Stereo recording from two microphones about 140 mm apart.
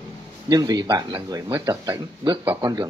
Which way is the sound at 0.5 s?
25° right (ahead or behind).